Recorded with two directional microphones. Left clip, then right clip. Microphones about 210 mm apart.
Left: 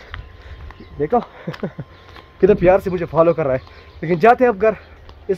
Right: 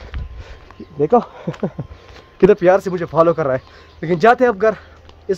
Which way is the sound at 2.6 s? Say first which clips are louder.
Even; 5° right (ahead or behind).